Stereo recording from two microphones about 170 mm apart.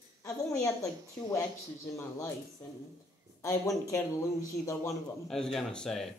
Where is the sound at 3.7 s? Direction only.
20° left (ahead or behind).